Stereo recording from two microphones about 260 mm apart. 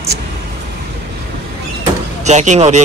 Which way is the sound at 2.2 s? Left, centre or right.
Right.